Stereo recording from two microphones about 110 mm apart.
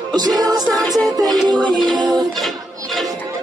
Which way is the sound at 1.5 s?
45° right (ahead or behind).